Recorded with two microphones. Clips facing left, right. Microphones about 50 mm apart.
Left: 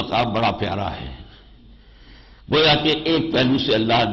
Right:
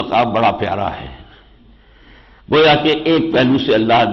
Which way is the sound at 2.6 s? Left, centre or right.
Right.